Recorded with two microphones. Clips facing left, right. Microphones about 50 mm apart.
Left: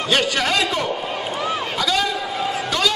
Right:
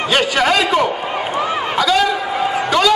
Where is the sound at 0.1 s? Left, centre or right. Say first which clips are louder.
Right 4 dB; centre.